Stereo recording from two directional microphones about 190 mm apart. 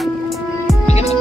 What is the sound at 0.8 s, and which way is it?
Music, 35° left (ahead or behind).